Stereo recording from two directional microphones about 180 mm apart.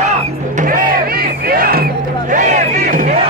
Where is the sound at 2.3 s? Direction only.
45° right (ahead or behind).